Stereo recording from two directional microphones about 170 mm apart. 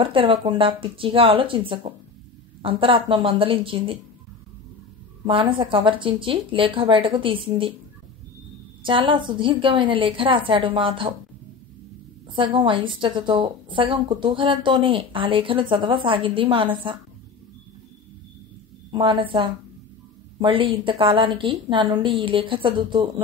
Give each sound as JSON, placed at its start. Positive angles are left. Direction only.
{"t": 0.0, "sound": "speech", "side_deg": -30}
{"t": 5.2, "sound": "speech", "side_deg": -30}
{"t": 8.8, "sound": "a woman's voice", "side_deg": -30}
{"t": 12.4, "sound": "a woman's voice", "side_deg": -30}
{"t": 18.9, "sound": "a woman's voice", "side_deg": -30}